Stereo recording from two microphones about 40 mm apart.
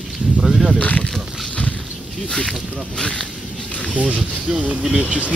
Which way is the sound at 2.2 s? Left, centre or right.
Centre.